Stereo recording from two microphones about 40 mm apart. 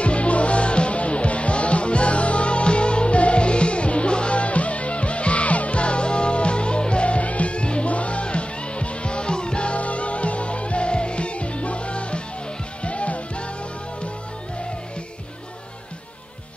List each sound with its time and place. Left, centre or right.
0.0 s music: left